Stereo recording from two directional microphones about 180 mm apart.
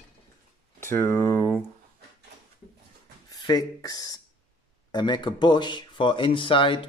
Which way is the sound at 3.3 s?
20° left (ahead or behind).